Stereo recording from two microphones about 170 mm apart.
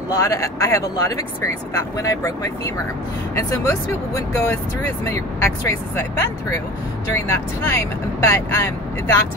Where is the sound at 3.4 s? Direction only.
20° left (ahead or behind).